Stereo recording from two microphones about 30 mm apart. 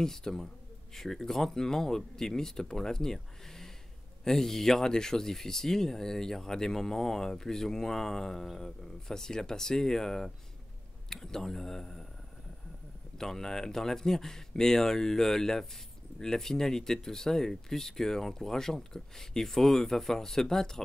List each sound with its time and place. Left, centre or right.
0.0 s speech: centre
13.2 s speech: centre